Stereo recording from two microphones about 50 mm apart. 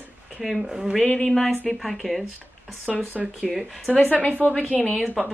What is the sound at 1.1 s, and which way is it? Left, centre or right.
A woman's voice, centre.